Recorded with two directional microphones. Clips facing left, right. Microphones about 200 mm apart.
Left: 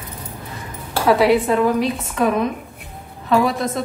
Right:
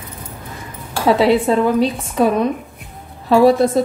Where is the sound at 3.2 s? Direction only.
30° right (ahead or behind).